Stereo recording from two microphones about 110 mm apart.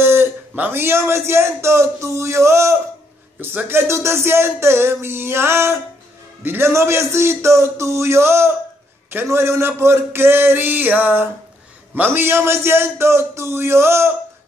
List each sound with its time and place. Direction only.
0.0 s a man's voice: 20° right (ahead or behind)